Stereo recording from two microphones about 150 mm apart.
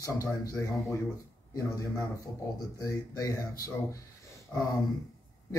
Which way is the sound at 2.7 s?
25° left (ahead or behind).